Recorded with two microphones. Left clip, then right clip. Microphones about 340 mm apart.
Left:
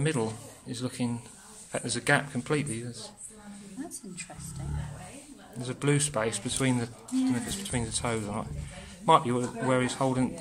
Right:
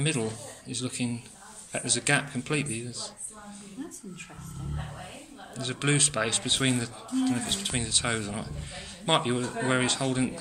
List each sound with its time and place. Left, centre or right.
0.0 s a man's voice: left
5.6 s a man's voice: left